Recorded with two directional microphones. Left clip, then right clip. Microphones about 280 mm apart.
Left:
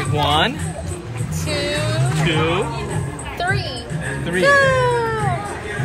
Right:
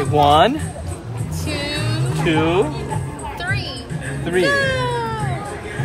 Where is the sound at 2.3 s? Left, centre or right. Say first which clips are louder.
Right 3 dB; right.